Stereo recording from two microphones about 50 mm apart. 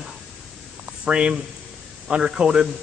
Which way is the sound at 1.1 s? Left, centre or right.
Centre.